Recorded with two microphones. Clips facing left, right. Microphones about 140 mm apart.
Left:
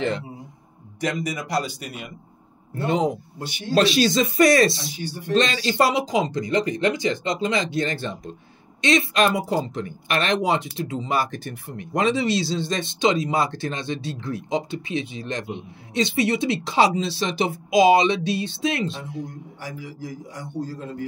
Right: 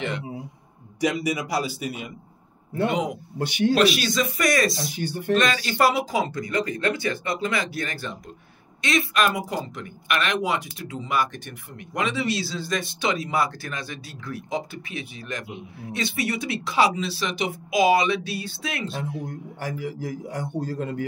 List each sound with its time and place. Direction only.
1.0 s speech: 10° right (ahead or behind)
3.3 s a man's voice: 65° right (ahead or behind)
3.7 s speech: 30° left (ahead or behind)
4.9 s a man's voice: 55° right (ahead or behind)
5.3 s speech: 30° left (ahead or behind)
19.6 s a man's voice: 55° right (ahead or behind)